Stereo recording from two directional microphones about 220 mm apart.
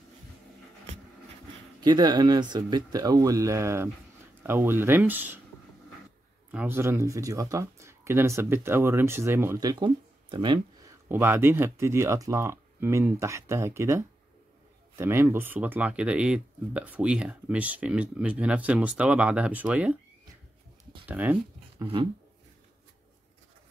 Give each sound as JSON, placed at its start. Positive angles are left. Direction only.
{"t": 1.8, "sound": "speech", "side_deg": -20}
{"t": 6.5, "sound": "speech", "side_deg": -10}
{"t": 11.1, "sound": "speech", "side_deg": -10}
{"t": 21.1, "sound": "speech", "side_deg": -10}